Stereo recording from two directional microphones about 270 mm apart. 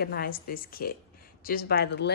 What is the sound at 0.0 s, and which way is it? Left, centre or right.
A woman's voice, left.